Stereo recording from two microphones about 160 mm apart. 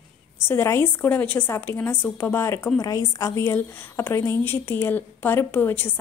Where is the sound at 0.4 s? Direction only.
15° left (ahead or behind).